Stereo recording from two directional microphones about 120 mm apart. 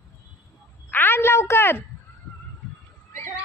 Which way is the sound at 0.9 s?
20° left (ahead or behind).